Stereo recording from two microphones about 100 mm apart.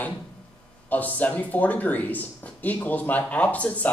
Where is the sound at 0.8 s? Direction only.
15° left (ahead or behind).